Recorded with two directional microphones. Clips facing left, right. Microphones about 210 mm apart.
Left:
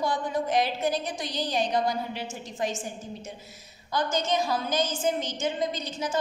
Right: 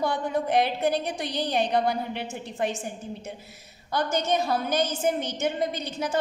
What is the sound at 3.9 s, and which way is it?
A woman's voice, 60° right (ahead or behind).